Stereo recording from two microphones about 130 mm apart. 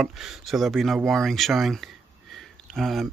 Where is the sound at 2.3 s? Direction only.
Centre (ahead or behind).